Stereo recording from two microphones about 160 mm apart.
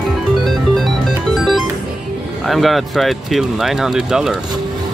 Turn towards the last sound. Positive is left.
turn(degrees=-5)  # may be behind; listen again after turning